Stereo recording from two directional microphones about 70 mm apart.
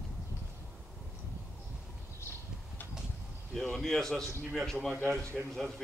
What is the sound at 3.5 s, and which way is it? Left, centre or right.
Speech, centre.